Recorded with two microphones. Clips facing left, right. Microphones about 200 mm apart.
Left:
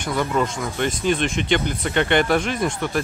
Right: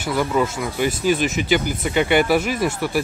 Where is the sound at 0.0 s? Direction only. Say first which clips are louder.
Right 2 dB; 5° right (ahead or behind).